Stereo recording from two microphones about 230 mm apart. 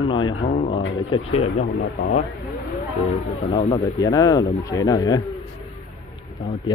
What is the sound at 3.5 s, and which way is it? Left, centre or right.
Speech, left.